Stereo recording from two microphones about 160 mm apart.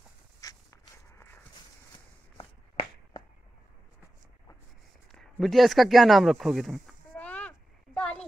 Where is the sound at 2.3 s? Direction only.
30° left (ahead or behind).